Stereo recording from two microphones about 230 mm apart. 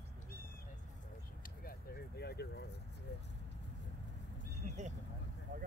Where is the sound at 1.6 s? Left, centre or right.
Left.